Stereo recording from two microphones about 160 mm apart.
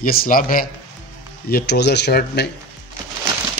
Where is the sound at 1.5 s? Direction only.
90° left.